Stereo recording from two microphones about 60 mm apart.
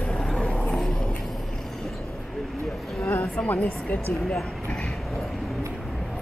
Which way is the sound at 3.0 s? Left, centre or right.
Left.